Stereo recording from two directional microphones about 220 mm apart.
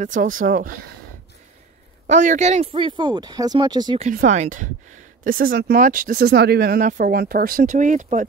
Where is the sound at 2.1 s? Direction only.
35° right (ahead or behind).